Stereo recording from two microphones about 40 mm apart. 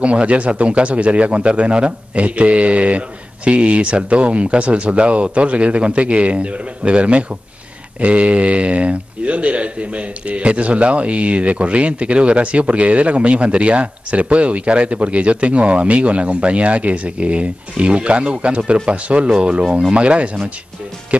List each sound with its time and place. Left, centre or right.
0.0 s speech: right